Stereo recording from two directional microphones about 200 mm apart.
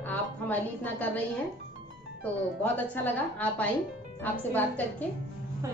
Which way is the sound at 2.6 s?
10° left (ahead or behind).